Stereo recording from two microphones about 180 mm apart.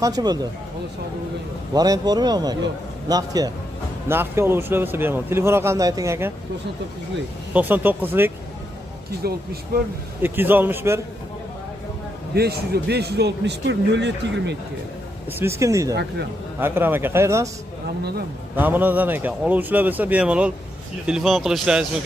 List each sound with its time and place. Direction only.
0.0 s a man's voice: 20° right (ahead or behind)
1.7 s a man's voice: 20° right (ahead or behind)
7.5 s speech: 10° right (ahead or behind)
9.2 s speech: 60° right (ahead or behind)
10.2 s speech: 10° right (ahead or behind)
12.4 s speech: 60° right (ahead or behind)
15.3 s speech: 15° right (ahead or behind)
15.9 s speech: 65° right (ahead or behind)
16.5 s speech: 10° right (ahead or behind)
18.6 s speech: 10° right (ahead or behind)